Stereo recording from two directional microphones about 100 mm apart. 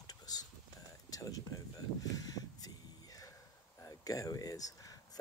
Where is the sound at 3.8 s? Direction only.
35° left (ahead or behind).